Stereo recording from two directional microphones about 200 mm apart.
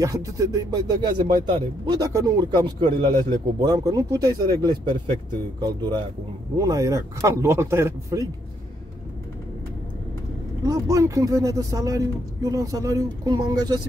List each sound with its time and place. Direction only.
0.0 s speech: 15° right (ahead or behind)
10.6 s speech: 15° right (ahead or behind)